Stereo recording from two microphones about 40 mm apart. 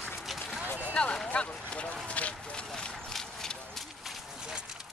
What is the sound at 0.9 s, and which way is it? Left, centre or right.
Speech, left.